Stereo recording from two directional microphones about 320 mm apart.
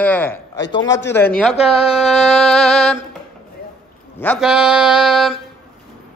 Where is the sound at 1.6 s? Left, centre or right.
Centre.